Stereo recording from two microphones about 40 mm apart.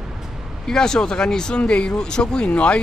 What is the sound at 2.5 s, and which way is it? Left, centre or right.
Speech, left.